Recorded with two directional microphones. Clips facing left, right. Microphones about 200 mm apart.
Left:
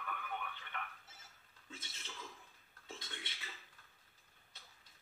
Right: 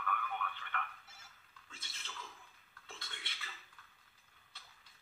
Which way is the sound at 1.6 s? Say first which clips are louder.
Left 3 dB; 20° left (ahead or behind).